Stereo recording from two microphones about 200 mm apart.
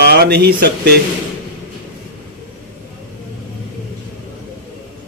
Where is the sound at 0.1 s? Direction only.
55° right (ahead or behind).